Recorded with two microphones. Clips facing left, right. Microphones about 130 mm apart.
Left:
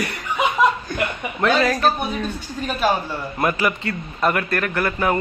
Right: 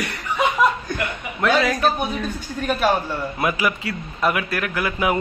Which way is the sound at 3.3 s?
5° right (ahead or behind).